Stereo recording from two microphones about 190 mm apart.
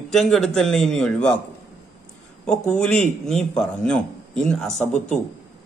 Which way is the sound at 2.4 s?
5° left (ahead or behind).